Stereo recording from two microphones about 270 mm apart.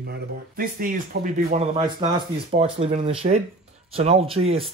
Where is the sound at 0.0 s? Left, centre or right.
Right.